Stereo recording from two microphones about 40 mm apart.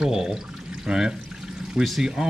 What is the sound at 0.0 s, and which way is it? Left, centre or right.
Speech, centre.